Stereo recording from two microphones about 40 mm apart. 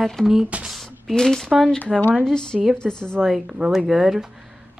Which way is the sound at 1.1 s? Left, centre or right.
Centre.